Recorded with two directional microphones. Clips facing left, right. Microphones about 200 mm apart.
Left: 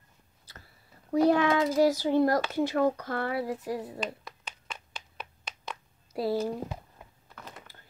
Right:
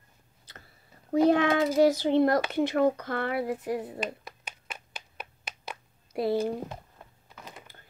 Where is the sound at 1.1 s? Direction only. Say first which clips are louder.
Right 1 dB; 25° right (ahead or behind).